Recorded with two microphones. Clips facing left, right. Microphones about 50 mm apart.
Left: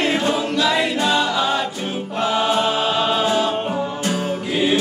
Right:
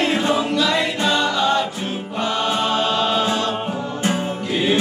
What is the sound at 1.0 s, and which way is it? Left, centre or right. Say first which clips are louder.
Chant: even; centre.